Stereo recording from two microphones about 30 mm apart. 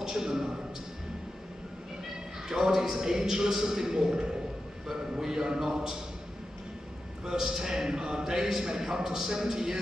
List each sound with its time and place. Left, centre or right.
0.0 s a sound: centre
2.4 s a man's voice: centre
7.2 s a man's voice: centre